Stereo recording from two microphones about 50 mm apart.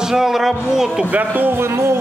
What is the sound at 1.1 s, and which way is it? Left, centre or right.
Speech, right.